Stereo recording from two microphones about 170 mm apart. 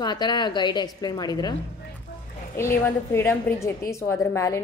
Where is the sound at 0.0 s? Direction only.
25° left (ahead or behind).